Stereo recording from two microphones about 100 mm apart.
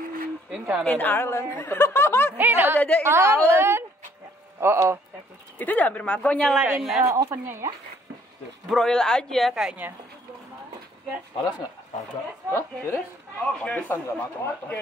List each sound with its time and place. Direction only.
0.5 s speech: 5° right (ahead or behind)
0.8 s speech: 20° left (ahead or behind)
2.3 s a woman's voice: 20° right (ahead or behind)
5.6 s speech: 15° left (ahead or behind)
6.5 s speech: 5° right (ahead or behind)
7.1 s speech: 30° right (ahead or behind)
8.6 s speech: 5° left (ahead or behind)
12.5 s speech: 25° left (ahead or behind)
13.4 s speech: 10° left (ahead or behind)